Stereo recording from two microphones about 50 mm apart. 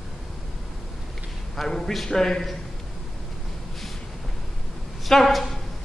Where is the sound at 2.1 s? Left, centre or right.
Centre.